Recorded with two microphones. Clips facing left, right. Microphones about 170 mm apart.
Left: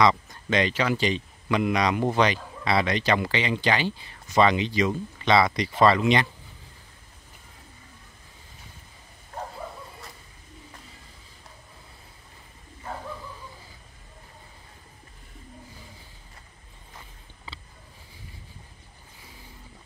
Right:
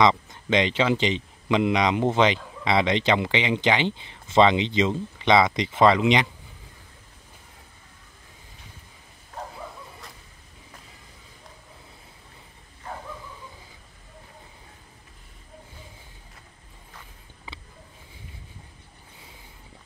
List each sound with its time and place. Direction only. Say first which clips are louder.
0.0 s speech: right 1 dB; 20° right (ahead or behind)